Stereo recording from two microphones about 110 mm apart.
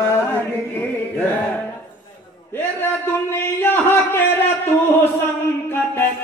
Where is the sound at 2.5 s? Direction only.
20° left (ahead or behind).